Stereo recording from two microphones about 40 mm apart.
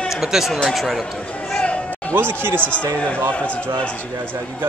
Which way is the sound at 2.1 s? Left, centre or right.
Right.